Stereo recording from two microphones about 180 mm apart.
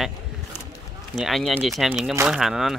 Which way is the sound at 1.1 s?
Centre (ahead or behind).